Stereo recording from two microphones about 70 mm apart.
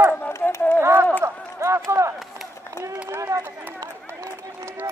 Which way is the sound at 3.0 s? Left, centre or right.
Right.